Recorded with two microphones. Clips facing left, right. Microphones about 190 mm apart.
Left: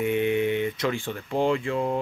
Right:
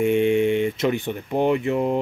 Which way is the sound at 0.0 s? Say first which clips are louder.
Right 5 dB; 25° right (ahead or behind).